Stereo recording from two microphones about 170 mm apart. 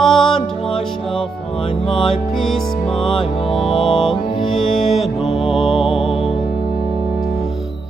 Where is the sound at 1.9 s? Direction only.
Centre (ahead or behind).